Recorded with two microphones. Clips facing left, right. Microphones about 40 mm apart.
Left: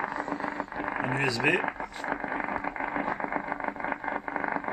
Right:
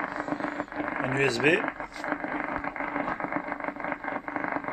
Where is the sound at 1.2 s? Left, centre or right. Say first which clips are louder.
Right 3 dB; right.